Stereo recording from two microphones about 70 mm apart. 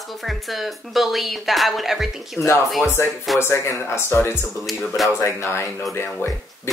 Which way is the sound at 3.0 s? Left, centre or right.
Left.